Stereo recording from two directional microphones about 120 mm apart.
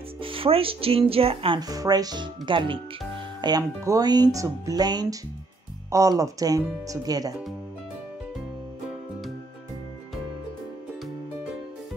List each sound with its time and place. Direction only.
0.2 s speech: 50° right (ahead or behind)
1.6 s speech: 30° right (ahead or behind)